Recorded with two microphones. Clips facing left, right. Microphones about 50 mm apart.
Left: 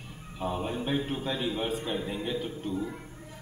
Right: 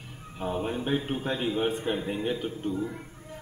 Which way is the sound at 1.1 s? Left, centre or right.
Right.